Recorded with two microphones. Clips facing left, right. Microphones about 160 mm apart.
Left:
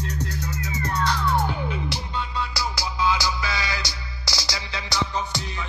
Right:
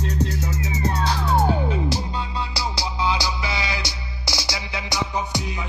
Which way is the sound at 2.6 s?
20° right (ahead or behind).